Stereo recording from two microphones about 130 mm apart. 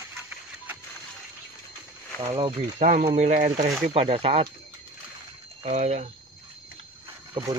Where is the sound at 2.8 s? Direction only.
70° right (ahead or behind).